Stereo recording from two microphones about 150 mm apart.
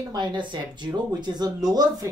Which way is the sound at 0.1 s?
30° right (ahead or behind).